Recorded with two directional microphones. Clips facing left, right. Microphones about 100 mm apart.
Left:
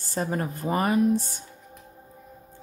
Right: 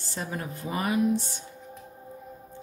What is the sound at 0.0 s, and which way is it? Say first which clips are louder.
A woman's voice: left 6 dB; 45° left (ahead or behind).